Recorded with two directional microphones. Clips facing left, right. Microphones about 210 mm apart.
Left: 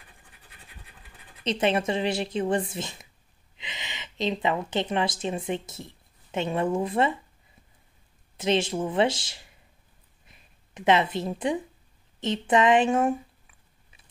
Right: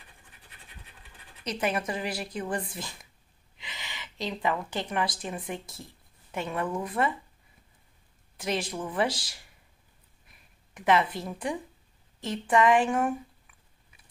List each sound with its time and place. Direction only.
1.4 s speech: 25° left (ahead or behind)
8.4 s speech: 25° left (ahead or behind)
10.2 s a sound: 20° left (ahead or behind)
12.2 s speech: 20° left (ahead or behind)